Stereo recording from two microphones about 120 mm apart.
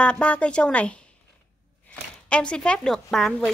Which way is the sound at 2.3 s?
10° left (ahead or behind).